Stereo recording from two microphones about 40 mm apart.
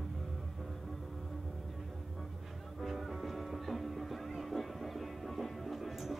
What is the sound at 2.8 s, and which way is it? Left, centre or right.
Music, centre.